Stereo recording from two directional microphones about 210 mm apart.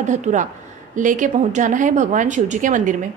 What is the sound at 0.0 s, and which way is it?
A woman's voice, 35° right (ahead or behind).